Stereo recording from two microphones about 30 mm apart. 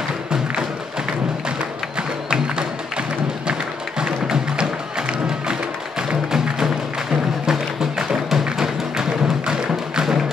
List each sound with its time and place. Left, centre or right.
4.0 s music: right